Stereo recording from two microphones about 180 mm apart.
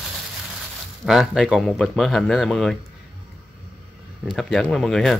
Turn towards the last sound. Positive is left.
turn(degrees=0)  # may be behind; listen again after turning